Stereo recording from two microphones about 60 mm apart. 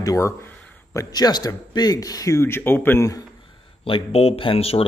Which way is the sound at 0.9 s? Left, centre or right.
Left.